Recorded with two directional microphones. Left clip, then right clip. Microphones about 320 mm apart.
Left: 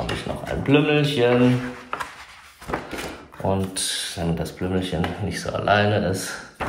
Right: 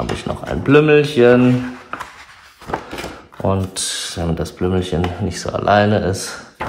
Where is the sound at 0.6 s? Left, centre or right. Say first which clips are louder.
Right 8 dB; centre.